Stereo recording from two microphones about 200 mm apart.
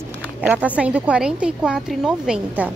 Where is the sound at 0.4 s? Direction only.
5° right (ahead or behind).